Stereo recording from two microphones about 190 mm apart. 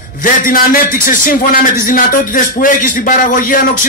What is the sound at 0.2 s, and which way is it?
A man's voice, 45° left (ahead or behind).